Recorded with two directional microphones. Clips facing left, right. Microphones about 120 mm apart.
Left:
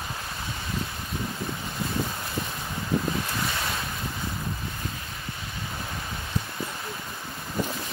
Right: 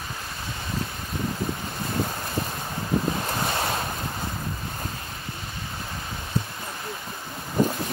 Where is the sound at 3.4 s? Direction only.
25° right (ahead or behind).